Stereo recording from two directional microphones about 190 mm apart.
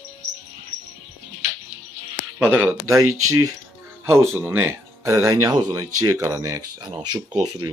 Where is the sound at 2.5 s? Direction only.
10° right (ahead or behind).